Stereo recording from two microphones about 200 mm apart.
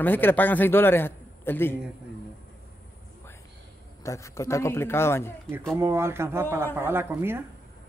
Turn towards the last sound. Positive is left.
turn(degrees=-10)  # may be behind; listen again after turning